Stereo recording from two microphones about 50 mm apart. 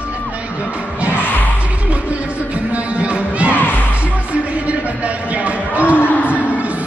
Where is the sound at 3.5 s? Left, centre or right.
Left.